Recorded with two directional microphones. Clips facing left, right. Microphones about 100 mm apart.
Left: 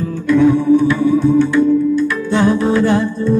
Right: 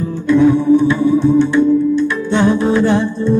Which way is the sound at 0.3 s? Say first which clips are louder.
Right 1 dB; 25° right (ahead or behind).